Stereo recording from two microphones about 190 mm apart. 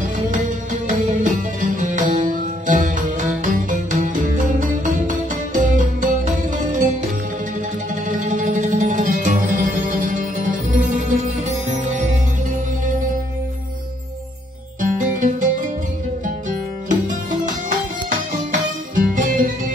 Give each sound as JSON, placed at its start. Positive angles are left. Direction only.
{"t": 0.8, "sound": "music", "side_deg": -40}
{"t": 8.1, "sound": "music", "side_deg": -45}
{"t": 14.8, "sound": "music", "side_deg": -45}